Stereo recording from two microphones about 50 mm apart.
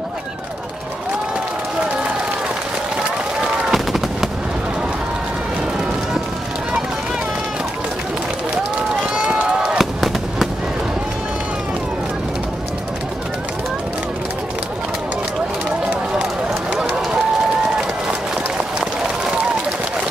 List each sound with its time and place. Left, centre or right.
3.7 s fireworks: centre
9.1 s run: centre
9.8 s fireworks: centre
16.7 s run: centre